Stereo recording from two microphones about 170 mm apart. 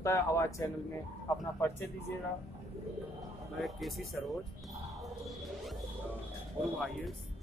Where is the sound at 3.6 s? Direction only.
Centre (ahead or behind).